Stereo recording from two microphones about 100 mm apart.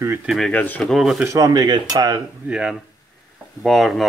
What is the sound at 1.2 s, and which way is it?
Speech, 30° right (ahead or behind).